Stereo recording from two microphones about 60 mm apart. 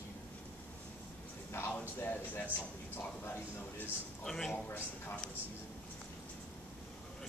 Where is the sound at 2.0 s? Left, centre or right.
Left.